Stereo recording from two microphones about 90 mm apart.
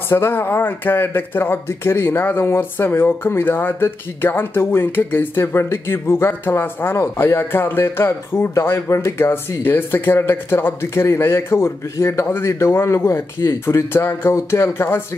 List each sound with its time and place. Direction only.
0.1 s speech: 25° left (ahead or behind)